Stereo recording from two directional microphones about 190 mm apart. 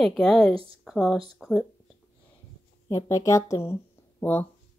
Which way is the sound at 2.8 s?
15° left (ahead or behind).